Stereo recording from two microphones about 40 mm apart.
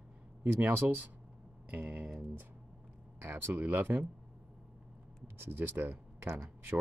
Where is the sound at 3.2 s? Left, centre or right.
Right.